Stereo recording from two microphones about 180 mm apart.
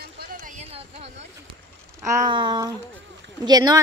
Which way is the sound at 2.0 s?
20° right (ahead or behind).